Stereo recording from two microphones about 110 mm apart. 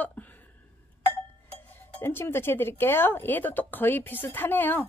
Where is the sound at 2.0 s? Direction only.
20° left (ahead or behind).